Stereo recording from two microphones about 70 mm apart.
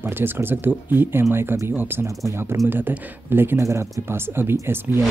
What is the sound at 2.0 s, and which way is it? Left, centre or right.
Speech, right.